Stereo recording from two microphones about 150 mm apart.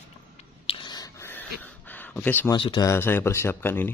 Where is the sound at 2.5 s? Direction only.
30° left (ahead or behind).